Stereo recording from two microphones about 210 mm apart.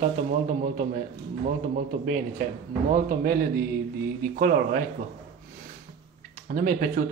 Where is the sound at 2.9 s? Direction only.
40° right (ahead or behind).